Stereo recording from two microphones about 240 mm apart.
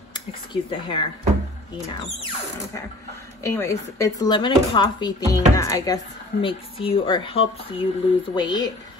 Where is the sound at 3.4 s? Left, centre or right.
Centre.